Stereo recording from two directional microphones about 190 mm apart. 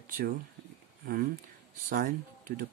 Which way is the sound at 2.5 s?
50° right (ahead or behind).